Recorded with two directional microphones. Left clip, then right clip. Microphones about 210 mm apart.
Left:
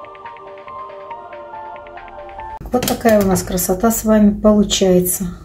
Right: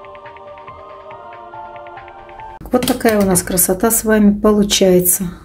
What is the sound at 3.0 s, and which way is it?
Speech, 55° right (ahead or behind).